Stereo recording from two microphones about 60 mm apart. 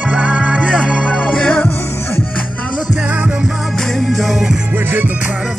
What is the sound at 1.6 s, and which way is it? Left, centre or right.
Music, left.